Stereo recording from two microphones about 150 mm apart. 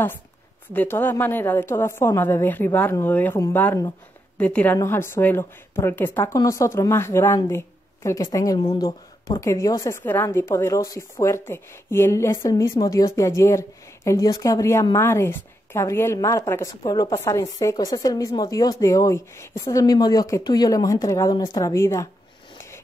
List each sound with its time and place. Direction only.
0.7 s a woman's voice: 15° left (ahead or behind)